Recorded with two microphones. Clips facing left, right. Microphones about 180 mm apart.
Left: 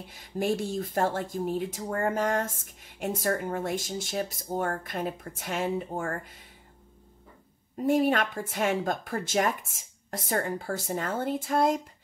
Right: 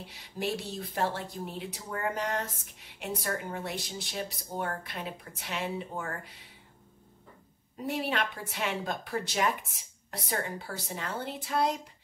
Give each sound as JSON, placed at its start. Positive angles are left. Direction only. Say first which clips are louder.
{"t": 0.1, "sound": "speech", "louder": "left 6 dB", "side_deg": 50}
{"t": 7.7, "sound": "speech", "louder": "left 8 dB", "side_deg": 50}